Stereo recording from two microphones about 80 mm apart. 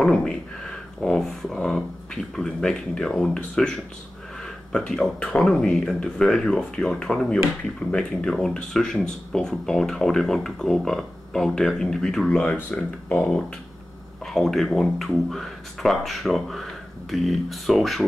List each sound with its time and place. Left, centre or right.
0.0 s speech: centre
12.5 s speech: centre
14.2 s speech: centre